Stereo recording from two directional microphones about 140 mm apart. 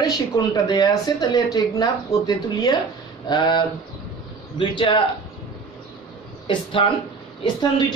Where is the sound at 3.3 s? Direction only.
35° left (ahead or behind).